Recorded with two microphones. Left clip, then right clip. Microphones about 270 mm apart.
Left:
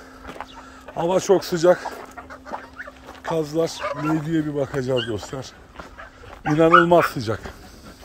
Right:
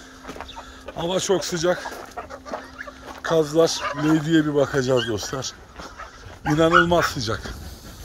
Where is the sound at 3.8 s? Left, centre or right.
Left.